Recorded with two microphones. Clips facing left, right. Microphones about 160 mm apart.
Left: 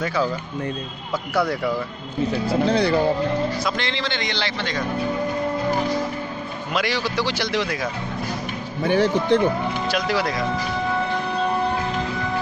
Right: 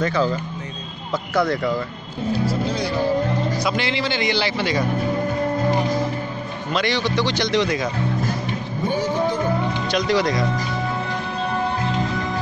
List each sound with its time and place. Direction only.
0.0 s a man's voice: 10° left (ahead or behind)
1.3 s a man's voice: 10° left (ahead or behind)
2.4 s speech: 65° left (ahead or behind)
3.5 s speech: 5° right (ahead or behind)
6.7 s a man's voice: 5° left (ahead or behind)
8.8 s speech: 70° left (ahead or behind)
9.8 s speech: 5° left (ahead or behind)